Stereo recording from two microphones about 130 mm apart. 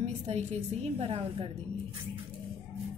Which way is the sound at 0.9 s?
50° right (ahead or behind).